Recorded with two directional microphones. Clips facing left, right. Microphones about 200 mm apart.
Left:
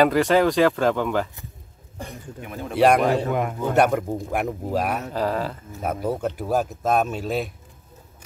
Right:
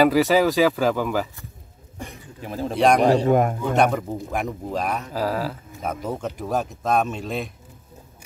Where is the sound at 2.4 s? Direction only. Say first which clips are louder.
Right 6 dB; 30° right (ahead or behind).